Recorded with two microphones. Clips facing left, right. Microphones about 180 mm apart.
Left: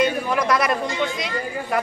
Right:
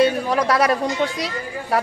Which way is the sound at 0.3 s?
35° right (ahead or behind).